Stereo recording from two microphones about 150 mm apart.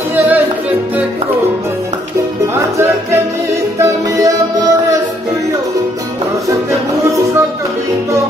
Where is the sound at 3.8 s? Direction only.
20° right (ahead or behind).